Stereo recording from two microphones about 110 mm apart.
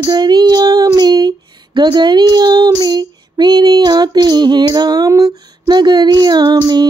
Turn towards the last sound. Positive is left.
turn(degrees=-40)  # may be behind; listen again after turning